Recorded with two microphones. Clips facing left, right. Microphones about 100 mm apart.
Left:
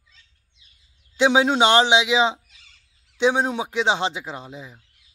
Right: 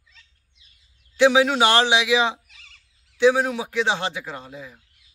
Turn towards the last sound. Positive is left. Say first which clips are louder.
# even
turn(degrees=20)  # may be behind; listen again after turning